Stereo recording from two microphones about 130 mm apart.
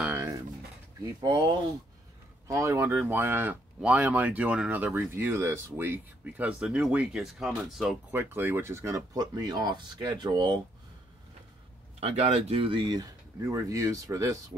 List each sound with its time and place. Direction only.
0.0 s pigeon: 10° right (ahead or behind)
1.0 s speech: 30° right (ahead or behind)
2.4 s speech: 25° right (ahead or behind); by 7.9 s 5° right (ahead or behind)
8.1 s speech: 15° right (ahead or behind); by 10.6 s 35° right (ahead or behind)
12.0 s speech: 50° right (ahead or behind); by 14.6 s 25° right (ahead or behind)